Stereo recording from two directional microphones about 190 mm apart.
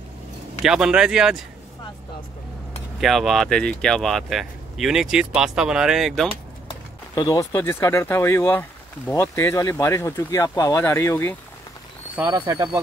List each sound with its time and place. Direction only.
0.6 s speech: 5° right (ahead or behind)
3.0 s speech: centre (ahead or behind)
6.7 s speech: 20° left (ahead or behind)
12.3 s speech: 20° right (ahead or behind)